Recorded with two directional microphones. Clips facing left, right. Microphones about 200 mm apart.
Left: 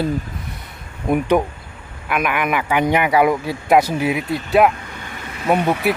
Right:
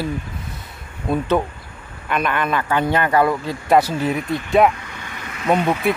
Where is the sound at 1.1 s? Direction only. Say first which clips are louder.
Left 3 dB; 15° left (ahead or behind).